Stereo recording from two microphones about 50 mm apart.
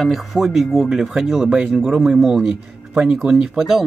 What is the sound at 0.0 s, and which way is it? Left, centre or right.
Speech, centre.